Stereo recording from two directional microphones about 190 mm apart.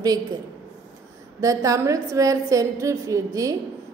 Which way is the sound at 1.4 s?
15° right (ahead or behind).